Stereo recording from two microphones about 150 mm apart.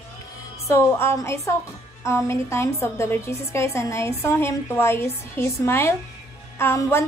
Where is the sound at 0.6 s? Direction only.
20° left (ahead or behind).